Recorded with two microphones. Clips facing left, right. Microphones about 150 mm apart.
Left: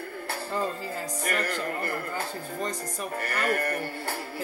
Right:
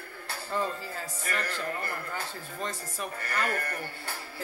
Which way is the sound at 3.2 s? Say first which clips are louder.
Left 4 dB; 60° left (ahead or behind).